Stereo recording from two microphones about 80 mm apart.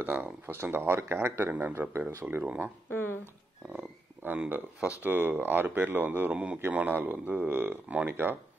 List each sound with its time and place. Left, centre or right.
0.0 s speech: right
2.9 s speech: left
4.2 s speech: right